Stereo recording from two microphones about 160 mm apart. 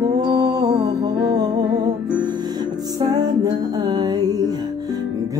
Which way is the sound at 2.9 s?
25° right (ahead or behind).